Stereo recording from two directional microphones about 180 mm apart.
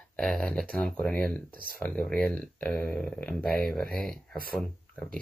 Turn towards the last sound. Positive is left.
turn(degrees=5)  # may be behind; listen again after turning